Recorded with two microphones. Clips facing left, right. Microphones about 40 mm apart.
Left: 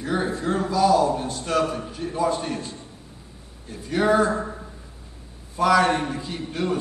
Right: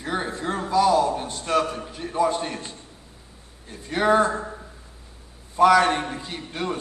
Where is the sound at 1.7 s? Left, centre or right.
Centre.